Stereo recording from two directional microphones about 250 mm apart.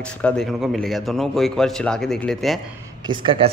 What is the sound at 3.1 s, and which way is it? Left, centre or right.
Speech, right.